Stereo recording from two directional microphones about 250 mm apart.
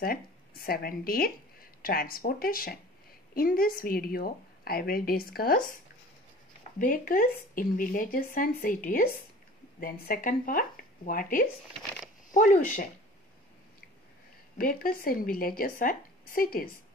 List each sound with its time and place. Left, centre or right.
0.0 s a woman's voice: left
6.8 s a woman's voice: left
14.6 s a woman's voice: left